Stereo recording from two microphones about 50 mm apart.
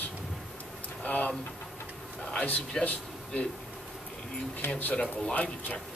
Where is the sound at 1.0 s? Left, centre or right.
Left.